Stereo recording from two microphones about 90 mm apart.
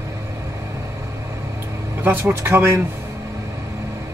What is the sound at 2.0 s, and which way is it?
Speech, 25° right (ahead or behind).